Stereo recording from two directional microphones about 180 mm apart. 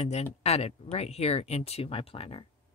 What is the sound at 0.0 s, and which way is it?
Speech, 35° left (ahead or behind).